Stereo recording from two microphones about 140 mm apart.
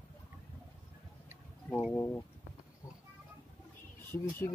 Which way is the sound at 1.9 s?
15° left (ahead or behind).